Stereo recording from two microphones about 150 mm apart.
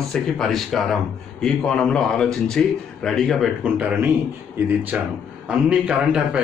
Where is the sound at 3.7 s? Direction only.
10° right (ahead or behind).